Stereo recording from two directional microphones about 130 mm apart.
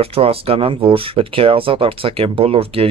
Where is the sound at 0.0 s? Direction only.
50° right (ahead or behind).